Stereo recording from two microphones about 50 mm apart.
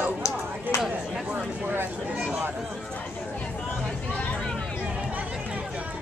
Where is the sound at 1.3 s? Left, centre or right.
Right.